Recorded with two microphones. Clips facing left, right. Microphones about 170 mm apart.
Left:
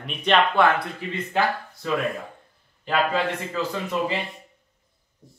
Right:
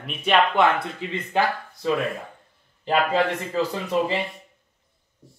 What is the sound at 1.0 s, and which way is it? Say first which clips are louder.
Speech: right 2 dB; 20° right (ahead or behind).